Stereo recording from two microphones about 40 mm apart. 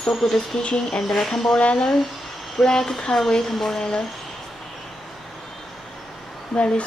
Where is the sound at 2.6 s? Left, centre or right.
Centre.